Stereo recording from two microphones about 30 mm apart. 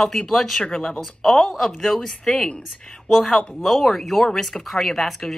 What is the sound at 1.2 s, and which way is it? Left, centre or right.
Speech, centre.